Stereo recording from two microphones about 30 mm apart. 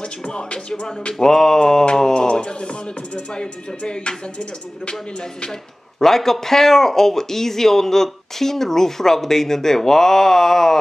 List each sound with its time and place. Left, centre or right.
0.3 s music: left
1.2 s speech: centre
3.3 s speech: left
5.9 s speech: centre